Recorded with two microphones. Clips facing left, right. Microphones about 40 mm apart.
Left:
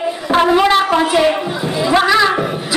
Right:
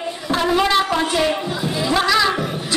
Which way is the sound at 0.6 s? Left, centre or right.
Centre.